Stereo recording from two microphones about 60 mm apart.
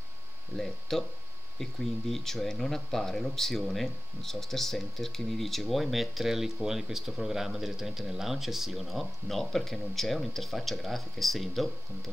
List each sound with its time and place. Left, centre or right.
0.6 s speech: centre